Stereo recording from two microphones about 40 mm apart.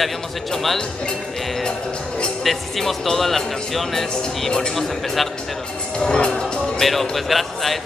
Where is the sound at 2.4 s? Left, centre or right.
Centre.